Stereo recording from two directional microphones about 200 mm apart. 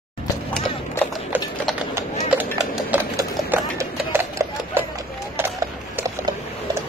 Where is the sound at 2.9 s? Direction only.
10° right (ahead or behind).